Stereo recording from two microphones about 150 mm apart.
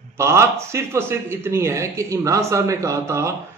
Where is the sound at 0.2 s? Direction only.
20° right (ahead or behind).